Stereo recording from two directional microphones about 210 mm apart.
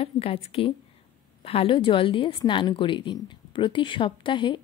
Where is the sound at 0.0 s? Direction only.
30° left (ahead or behind).